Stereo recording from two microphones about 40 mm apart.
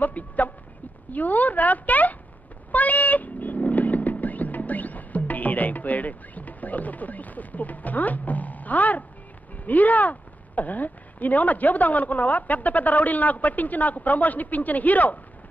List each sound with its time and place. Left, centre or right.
0.0 s speech: left
2.7 s vehicle: left
9.7 s speech: left